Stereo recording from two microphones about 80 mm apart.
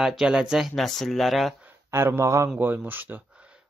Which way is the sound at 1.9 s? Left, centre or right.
Right.